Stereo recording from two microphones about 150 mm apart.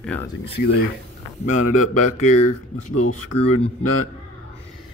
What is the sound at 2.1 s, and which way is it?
Speech, 55° left (ahead or behind).